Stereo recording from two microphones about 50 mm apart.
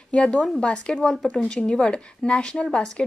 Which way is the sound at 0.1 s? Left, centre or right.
Centre.